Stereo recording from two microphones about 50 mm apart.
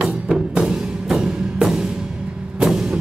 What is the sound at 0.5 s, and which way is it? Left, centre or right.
Music, centre.